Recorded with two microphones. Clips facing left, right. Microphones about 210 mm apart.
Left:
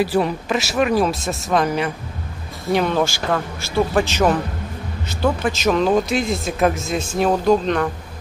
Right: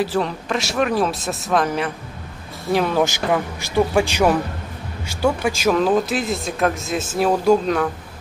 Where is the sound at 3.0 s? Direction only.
15° right (ahead or behind).